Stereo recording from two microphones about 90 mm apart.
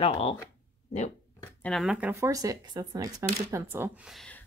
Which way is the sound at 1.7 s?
10° left (ahead or behind).